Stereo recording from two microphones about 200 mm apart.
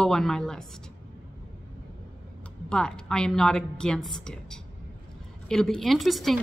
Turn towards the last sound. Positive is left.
turn(degrees=0)  # may be behind; listen again after turning